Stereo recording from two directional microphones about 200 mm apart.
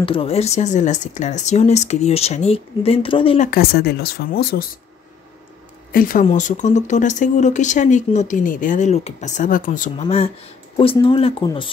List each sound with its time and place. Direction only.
0.0 s speech: 25° left (ahead or behind)
3.3 s speech: 50° left (ahead or behind)
5.9 s speech: 45° left (ahead or behind); by 11.7 s 25° left (ahead or behind)